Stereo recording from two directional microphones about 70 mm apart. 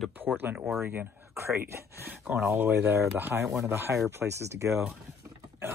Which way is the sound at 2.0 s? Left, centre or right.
Right.